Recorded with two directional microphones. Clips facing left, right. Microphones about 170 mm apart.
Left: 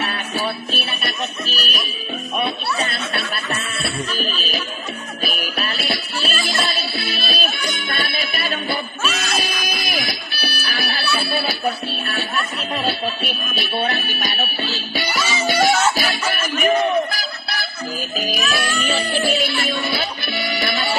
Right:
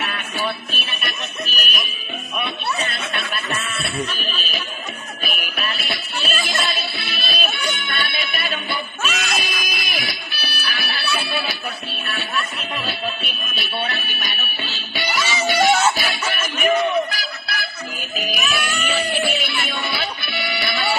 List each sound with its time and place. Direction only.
0.0 s music: 35° left (ahead or behind)
2.3 s speech: 35° left (ahead or behind)
5.2 s music: 35° left (ahead or behind)
16.6 s a sound: 35° left (ahead or behind)
18.1 s music: 35° left (ahead or behind)